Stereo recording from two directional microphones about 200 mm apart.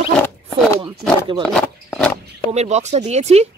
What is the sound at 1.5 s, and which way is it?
Wild animals, 5° left (ahead or behind).